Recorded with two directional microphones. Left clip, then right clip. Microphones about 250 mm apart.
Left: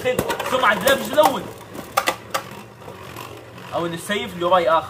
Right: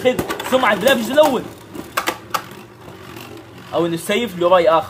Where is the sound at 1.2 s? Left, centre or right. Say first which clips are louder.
Right 3 dB; right.